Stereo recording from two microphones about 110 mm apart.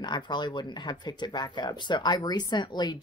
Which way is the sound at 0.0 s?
40° left (ahead or behind).